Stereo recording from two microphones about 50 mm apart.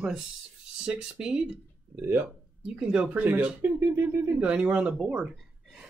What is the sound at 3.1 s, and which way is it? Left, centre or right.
Speech, right.